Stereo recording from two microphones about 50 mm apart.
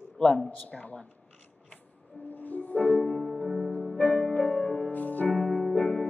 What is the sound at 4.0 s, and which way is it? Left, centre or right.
Music, left.